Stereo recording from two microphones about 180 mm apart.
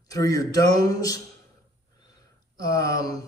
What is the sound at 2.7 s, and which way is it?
Speech, 20° left (ahead or behind).